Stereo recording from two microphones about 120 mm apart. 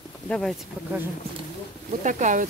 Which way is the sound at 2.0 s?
90° right.